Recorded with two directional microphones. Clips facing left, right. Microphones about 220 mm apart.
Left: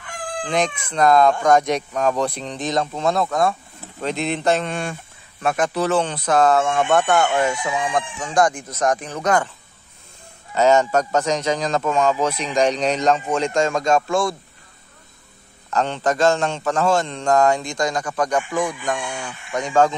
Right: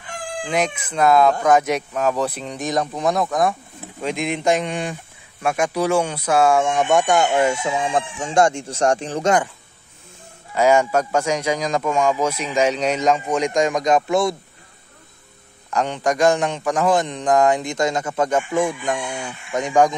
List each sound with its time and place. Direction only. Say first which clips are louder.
0.4 s a man's voice: even; 10° right (ahead or behind); by 9.4 s 30° right (ahead or behind)
10.5 s a man's voice: even; 10° right (ahead or behind)
15.7 s a man's voice: even; 15° right (ahead or behind)